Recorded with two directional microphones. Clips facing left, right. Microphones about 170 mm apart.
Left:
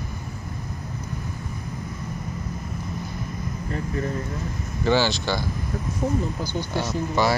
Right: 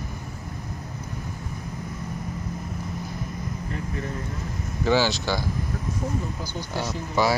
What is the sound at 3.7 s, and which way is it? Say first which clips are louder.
Air conditioning: left 6 dB; 40° left (ahead or behind).